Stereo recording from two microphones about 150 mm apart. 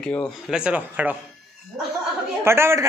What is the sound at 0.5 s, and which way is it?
Speech, 10° right (ahead or behind).